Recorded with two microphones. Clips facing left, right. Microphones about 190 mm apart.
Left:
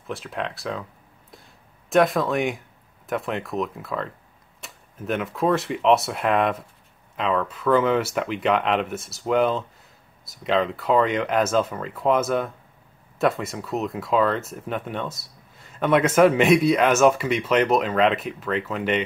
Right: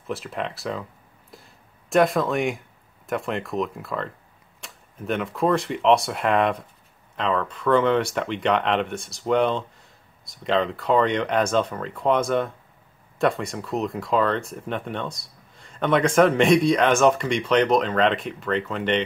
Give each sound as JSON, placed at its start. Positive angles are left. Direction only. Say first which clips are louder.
{"t": 0.0, "sound": "speech", "louder": "right 1 dB", "side_deg": 0}
{"t": 1.3, "sound": "a sound", "louder": "right 2 dB", "side_deg": 0}
{"t": 3.1, "sound": "speech", "louder": "even", "side_deg": 0}